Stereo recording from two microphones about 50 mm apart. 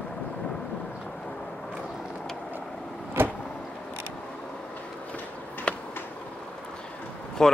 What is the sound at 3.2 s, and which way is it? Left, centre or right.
Vehicle, right.